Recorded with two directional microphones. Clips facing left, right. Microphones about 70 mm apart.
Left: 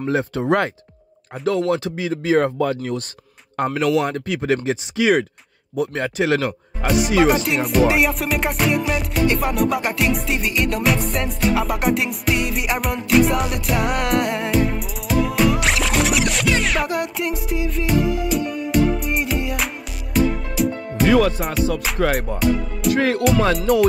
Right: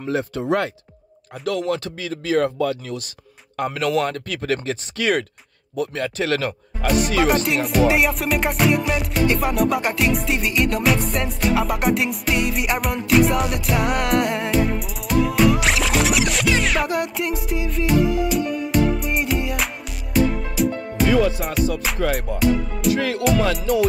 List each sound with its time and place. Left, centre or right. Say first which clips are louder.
0.0 s speech: left 3 dB; left
3.5 s speech: left 2 dB; left
7.0 s music: left 3 dB; centre
21.3 s music: left 1 dB; left
21.5 s music: left 1 dB; centre
22.0 s music: left 1 dB; left